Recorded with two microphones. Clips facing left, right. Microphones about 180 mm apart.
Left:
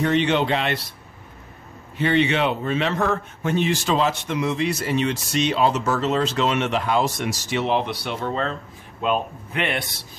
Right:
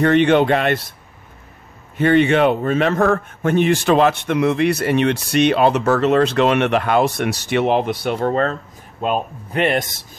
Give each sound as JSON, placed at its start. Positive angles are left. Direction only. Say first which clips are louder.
{"t": 0.0, "sound": "speech", "louder": "right 6 dB", "side_deg": -55}
{"t": 2.0, "sound": "a man's voice", "louder": "right 6 dB", "side_deg": -50}
{"t": 9.0, "sound": "speech", "louder": "right 2 dB", "side_deg": -40}